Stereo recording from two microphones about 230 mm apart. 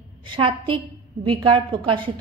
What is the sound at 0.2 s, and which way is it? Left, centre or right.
A man's voice, right.